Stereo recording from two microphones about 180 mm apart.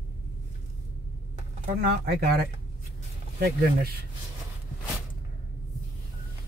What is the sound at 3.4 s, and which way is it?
Speech, 55° right (ahead or behind).